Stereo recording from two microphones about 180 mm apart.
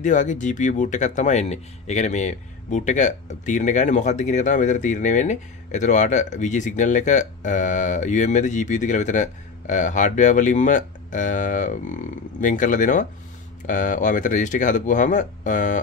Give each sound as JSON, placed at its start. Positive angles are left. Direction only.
{"t": 0.0, "sound": "speech", "side_deg": 45}